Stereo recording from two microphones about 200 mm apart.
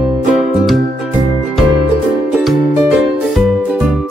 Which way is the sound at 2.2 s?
Centre (ahead or behind).